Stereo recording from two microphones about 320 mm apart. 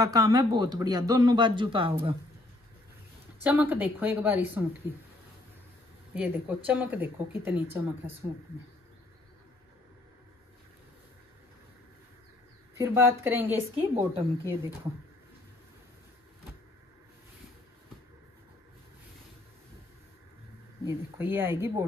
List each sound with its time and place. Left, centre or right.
0.0 s speech: centre
3.4 s speech: centre
6.1 s speech: centre
12.7 s speech: centre
13.7 s speech: centre
20.8 s speech: centre